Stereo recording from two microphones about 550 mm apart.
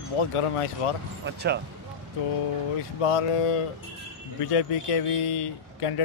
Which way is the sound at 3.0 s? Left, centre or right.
Left.